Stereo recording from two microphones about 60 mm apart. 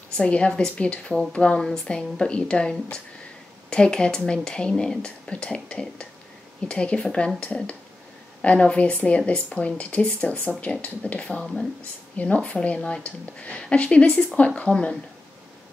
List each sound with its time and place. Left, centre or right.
0.2 s speech: centre
3.7 s speech: centre